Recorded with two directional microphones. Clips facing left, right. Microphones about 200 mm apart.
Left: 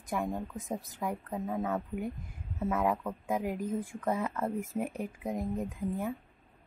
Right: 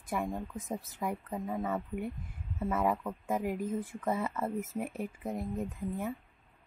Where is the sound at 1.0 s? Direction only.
5° right (ahead or behind).